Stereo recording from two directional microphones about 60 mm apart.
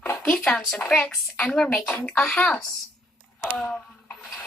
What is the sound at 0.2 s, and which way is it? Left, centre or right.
A woman's voice, centre.